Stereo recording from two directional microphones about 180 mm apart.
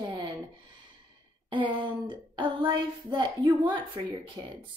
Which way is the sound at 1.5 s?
25° right (ahead or behind).